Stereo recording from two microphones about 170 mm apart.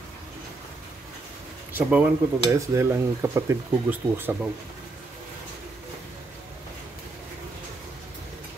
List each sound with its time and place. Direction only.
1.7 s speech: 10° right (ahead or behind)